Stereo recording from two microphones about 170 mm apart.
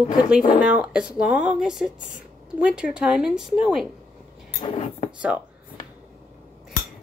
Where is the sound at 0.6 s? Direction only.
5° right (ahead or behind).